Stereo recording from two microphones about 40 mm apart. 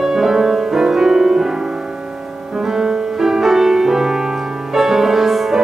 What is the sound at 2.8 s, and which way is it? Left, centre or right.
Music, centre.